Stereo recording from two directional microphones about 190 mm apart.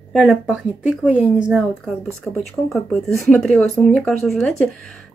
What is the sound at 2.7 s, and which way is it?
Speech, centre (ahead or behind).